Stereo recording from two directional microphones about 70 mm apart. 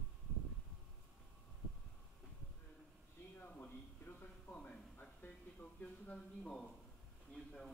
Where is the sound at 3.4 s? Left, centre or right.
Left.